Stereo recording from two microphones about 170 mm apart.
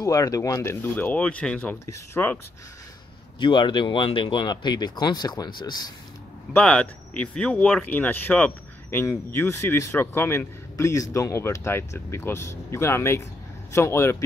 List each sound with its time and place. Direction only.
0.0 s speech: 20° left (ahead or behind)
3.3 s speech: 25° left (ahead or behind)
6.5 s speech: 5° left (ahead or behind)